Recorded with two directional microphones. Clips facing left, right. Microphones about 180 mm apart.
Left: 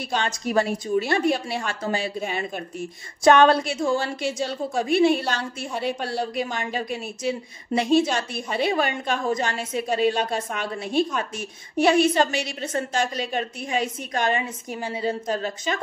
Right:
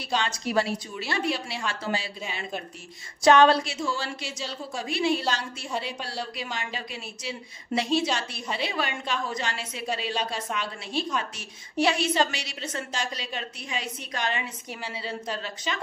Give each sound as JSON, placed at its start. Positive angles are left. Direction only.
{"t": 0.1, "sound": "a woman's voice", "side_deg": 50}